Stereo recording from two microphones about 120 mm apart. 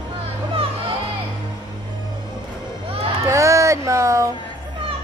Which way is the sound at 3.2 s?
25° right (ahead or behind).